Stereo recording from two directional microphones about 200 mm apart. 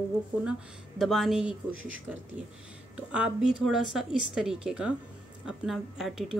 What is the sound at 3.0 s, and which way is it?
Speech, 5° right (ahead or behind).